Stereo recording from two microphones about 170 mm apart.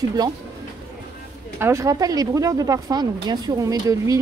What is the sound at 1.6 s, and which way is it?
Speech, 15° right (ahead or behind).